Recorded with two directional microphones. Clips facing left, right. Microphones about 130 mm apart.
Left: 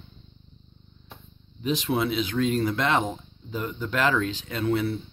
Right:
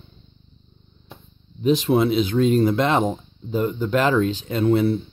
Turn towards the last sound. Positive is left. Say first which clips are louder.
# right 7 dB
turn(degrees=-35)  # may be behind; listen again after turning